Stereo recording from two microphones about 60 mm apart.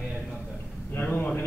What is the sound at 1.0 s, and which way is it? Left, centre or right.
Speech, left.